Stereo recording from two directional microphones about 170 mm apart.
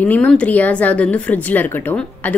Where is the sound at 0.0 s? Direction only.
10° left (ahead or behind).